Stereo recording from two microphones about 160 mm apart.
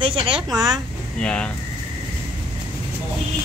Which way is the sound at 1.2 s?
5° left (ahead or behind).